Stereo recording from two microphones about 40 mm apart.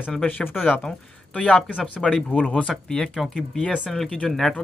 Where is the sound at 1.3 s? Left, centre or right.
Left.